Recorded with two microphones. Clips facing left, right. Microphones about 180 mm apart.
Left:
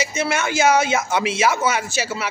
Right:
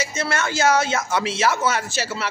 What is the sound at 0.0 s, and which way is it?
Speech, 15° left (ahead or behind).